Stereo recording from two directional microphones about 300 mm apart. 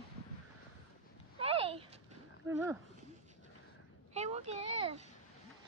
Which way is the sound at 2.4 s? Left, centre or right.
Centre.